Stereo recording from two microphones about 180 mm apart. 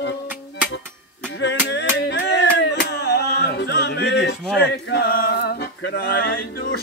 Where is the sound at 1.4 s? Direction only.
75° left (ahead or behind).